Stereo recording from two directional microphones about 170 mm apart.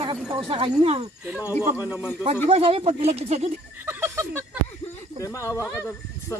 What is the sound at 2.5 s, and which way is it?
Speech, 35° right (ahead or behind).